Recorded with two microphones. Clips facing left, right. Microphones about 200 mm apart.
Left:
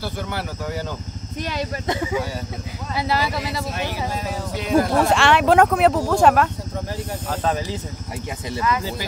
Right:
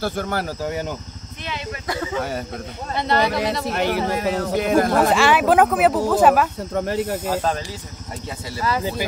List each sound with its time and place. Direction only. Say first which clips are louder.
0.0 s speech: right 4 dB; 50° right (ahead or behind)
1.4 s speech: left 5 dB; 40° left (ahead or behind)
1.9 s speech: even; 15° left (ahead or behind)
2.9 s speech: right 3 dB; 5° left (ahead or behind)
3.6 s speech: right 5 dB; 65° right (ahead or behind)
5.0 s speech: right 1 dB; centre (ahead or behind)
6.7 s speech: right 7 dB; 65° right (ahead or behind)
7.2 s speech: left 2 dB; 10° right (ahead or behind)